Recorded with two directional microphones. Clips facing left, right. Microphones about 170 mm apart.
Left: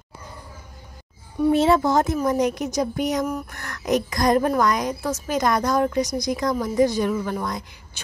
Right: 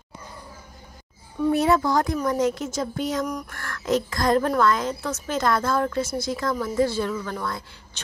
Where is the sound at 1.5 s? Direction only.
25° left (ahead or behind).